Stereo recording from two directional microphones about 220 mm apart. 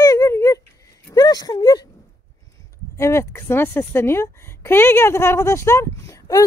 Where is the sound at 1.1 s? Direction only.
15° left (ahead or behind).